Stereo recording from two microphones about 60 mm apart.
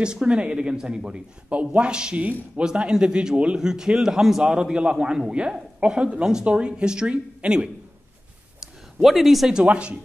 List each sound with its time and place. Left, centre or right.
0.0 s speech: centre
9.0 s speech: centre
9.7 s speech: centre